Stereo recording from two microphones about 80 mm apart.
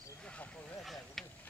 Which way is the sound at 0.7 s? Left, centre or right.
Centre.